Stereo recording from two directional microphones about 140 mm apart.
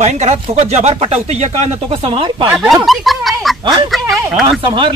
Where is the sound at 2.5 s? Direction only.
5° right (ahead or behind).